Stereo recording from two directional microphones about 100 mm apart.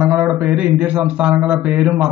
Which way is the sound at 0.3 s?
15° right (ahead or behind).